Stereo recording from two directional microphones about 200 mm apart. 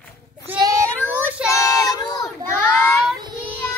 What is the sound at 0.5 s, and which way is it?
Child singing, 20° right (ahead or behind).